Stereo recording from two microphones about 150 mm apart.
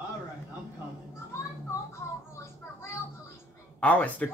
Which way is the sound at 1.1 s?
20° left (ahead or behind).